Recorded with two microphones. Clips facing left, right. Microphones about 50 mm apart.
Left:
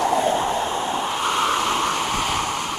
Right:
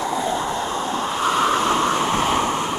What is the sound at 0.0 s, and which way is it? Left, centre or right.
Train, left.